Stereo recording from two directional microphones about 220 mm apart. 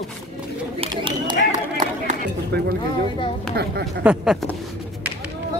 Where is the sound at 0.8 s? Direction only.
20° right (ahead or behind).